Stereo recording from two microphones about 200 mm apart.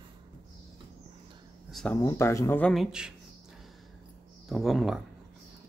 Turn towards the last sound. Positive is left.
turn(degrees=0)  # may be behind; listen again after turning